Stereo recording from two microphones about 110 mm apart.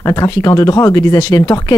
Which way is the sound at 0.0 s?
30° left (ahead or behind).